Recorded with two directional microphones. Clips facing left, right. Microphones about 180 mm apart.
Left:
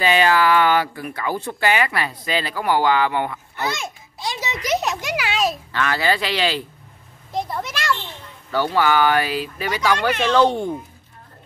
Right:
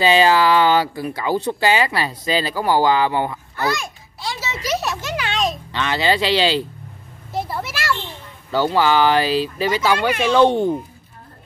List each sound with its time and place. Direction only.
0.0 s speech: 30° right (ahead or behind)
3.5 s a sound: 20° left (ahead or behind); by 5.6 s 5° left (ahead or behind)
5.7 s speech: 25° right (ahead or behind)
7.3 s a sound: 5° right (ahead or behind)
8.5 s speech: 25° right (ahead or behind)
9.9 s speech: 10° right (ahead or behind)
10.4 s speech: 25° right (ahead or behind)